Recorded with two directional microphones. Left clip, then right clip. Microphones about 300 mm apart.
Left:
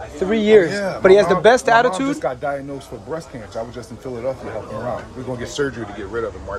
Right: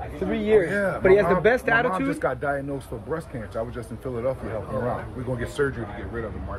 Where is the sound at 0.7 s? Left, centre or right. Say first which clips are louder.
Left 6 dB; centre.